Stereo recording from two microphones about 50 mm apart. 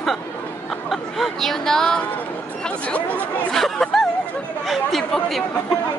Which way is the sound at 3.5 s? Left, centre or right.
Centre.